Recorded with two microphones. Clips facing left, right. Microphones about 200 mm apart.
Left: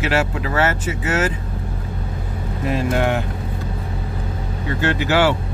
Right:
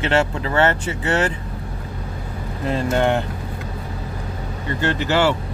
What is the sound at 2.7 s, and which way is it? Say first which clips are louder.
Speech: right 1 dB; 5° left (ahead or behind).